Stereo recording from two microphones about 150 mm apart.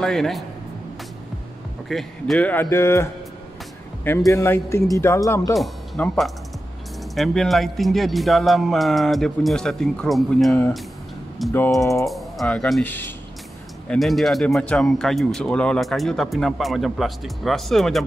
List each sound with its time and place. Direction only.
0.0 s speech: centre (ahead or behind)
1.9 s speech: centre (ahead or behind); by 3.1 s 15° left (ahead or behind)
4.3 s speech: 20° left (ahead or behind)
5.6 s speech: centre (ahead or behind)
11.8 s speech: 20° left (ahead or behind)
12.1 s speech: centre (ahead or behind)
12.8 s speech: 15° left (ahead or behind)
13.8 s speech: centre (ahead or behind)